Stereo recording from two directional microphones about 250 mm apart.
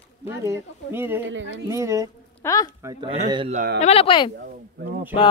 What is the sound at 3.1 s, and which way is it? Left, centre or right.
Speech, right.